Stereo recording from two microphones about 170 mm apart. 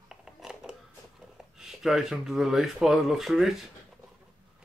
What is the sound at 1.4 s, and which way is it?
Speech, 5° right (ahead or behind).